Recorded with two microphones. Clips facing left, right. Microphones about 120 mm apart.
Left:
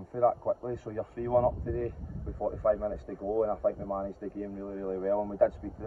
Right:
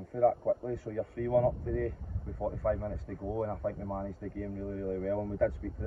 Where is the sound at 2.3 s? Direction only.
30° left (ahead or behind).